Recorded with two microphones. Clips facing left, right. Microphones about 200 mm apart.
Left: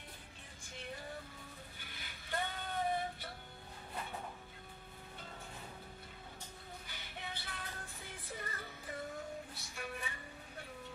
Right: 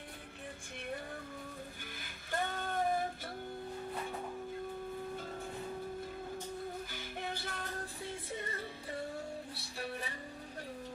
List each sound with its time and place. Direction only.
2.0 s music: 45° right (ahead or behind)
6.9 s music: 45° right (ahead or behind)
8.0 s music: 25° right (ahead or behind)